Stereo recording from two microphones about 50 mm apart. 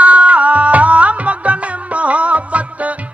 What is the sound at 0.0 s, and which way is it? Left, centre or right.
Music, right.